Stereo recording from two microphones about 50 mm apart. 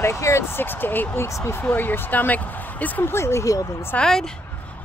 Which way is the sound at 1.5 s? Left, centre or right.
Left.